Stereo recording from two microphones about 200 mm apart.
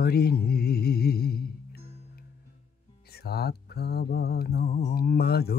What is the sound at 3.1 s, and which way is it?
Speech, 50° left (ahead or behind).